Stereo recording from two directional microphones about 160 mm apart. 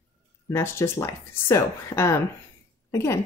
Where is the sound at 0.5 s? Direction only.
15° left (ahead or behind).